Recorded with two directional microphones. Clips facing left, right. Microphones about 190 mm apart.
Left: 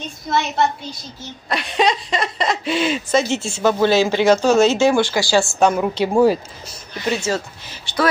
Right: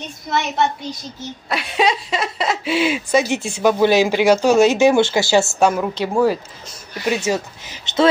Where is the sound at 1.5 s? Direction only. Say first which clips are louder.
Even; 5° right (ahead or behind); by 5.6 s 20° right (ahead or behind).